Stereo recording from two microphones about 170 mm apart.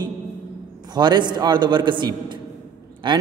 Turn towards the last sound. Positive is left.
turn(degrees=-30)  # may be behind; listen again after turning